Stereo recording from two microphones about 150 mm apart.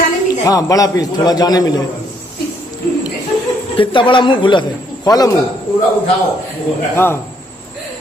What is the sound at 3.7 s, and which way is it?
A man's voice, 35° left (ahead or behind).